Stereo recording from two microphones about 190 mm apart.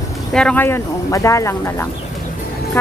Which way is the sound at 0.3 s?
5° left (ahead or behind).